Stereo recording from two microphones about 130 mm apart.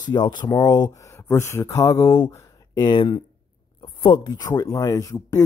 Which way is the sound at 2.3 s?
30° left (ahead or behind).